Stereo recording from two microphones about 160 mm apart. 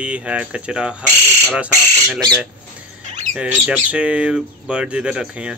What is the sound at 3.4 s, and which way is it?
Speech, 5° right (ahead or behind).